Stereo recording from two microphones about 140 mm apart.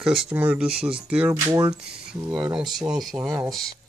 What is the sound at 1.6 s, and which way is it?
Speech, 5° right (ahead or behind).